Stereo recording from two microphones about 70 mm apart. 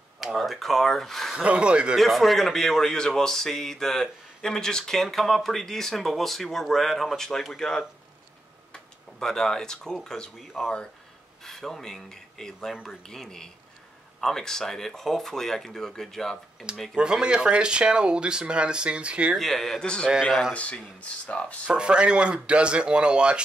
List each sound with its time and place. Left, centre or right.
0.2 s speech: centre
1.3 s speech: centre
2.0 s speech: centre
16.9 s speech: centre
19.3 s speech: centre
20.1 s speech: centre
20.5 s speech: centre
21.6 s speech: centre